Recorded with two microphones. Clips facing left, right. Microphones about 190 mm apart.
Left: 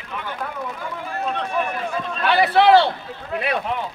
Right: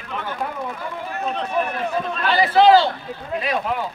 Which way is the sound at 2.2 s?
65° left (ahead or behind).